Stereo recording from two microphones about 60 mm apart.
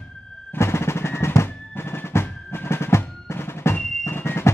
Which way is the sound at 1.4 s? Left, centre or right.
Left.